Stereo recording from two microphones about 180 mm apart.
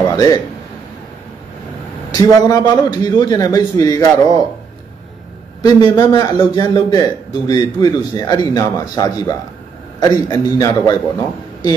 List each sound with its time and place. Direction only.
0.1 s a man's voice: 20° left (ahead or behind)
2.1 s a man's voice: 20° left (ahead or behind)
5.6 s a man's voice: 20° left (ahead or behind)